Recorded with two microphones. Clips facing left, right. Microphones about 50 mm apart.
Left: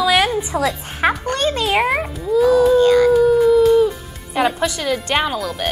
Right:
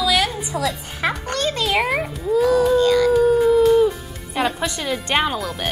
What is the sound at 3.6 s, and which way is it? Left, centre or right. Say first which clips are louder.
Music: left 1 dB; centre.